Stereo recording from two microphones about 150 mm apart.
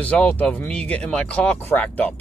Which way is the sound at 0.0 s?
10° left (ahead or behind).